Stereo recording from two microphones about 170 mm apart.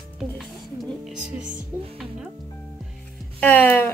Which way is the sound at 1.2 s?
50° right (ahead or behind).